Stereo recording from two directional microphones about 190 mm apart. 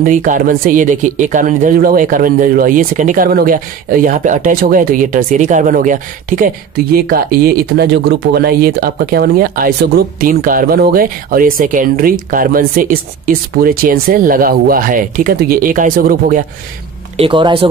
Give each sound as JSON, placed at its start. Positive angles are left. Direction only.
{"t": 0.0, "sound": "speech", "side_deg": -45}
{"t": 17.2, "sound": "speech", "side_deg": -25}